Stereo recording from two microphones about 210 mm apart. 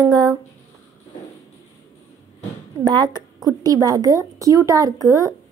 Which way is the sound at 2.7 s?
20° right (ahead or behind).